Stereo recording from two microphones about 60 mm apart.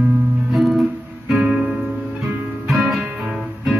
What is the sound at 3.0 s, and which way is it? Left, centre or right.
Music, centre.